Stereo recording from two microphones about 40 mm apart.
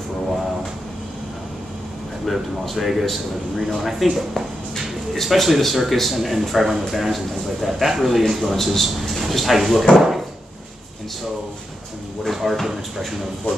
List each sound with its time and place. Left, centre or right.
2.2 s speech: centre
12.3 s speech: centre